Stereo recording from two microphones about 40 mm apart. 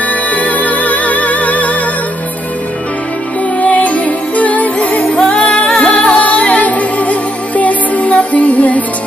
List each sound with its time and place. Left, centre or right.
0.1 s music: left
3.6 s music: left
5.0 s music: left